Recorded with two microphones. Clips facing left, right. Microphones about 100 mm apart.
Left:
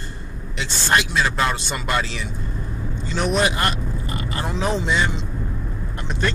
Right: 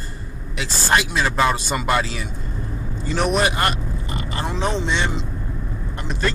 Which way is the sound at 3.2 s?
5° right (ahead or behind).